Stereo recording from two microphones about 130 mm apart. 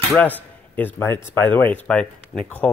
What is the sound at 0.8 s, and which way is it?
Speech, 15° left (ahead or behind).